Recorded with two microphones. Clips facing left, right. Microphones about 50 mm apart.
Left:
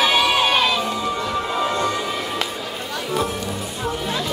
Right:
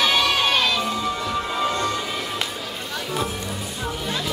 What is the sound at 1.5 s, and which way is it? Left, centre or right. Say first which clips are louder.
Music: left 2 dB; centre.